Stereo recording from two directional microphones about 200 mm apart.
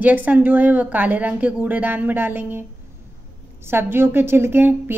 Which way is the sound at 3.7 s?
10° right (ahead or behind).